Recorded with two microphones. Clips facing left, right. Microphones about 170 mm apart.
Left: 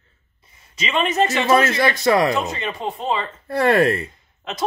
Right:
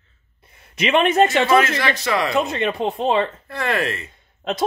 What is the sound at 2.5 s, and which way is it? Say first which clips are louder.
Speech: right 5 dB; 65° right (ahead or behind).